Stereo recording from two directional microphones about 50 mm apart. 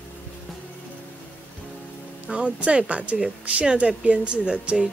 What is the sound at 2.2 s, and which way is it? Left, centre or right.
Speech, right.